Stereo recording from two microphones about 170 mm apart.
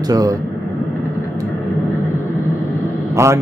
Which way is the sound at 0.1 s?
20° right (ahead or behind).